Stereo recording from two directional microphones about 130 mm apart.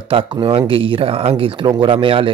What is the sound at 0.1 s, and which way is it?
Speech, 40° right (ahead or behind).